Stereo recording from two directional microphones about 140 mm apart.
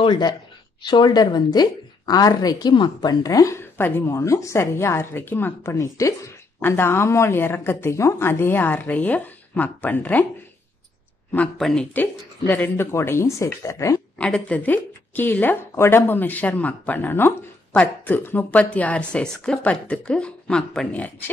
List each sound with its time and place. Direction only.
0.0 s a woman's voice: 35° left (ahead or behind); by 10.2 s 10° left (ahead or behind)
11.3 s a woman's voice: 5° left (ahead or behind); by 14.0 s 20° left (ahead or behind)
14.1 s a woman's voice: 10° left (ahead or behind)